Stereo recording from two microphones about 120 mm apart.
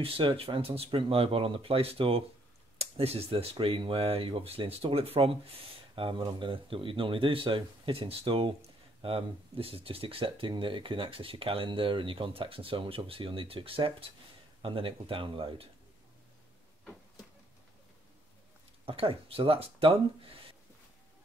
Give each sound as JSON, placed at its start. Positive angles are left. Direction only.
{"t": 0.0, "sound": "speech", "side_deg": -50}
{"t": 18.9, "sound": "speech", "side_deg": -50}